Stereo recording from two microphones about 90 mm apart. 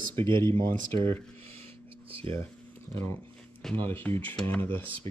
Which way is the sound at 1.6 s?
85° right.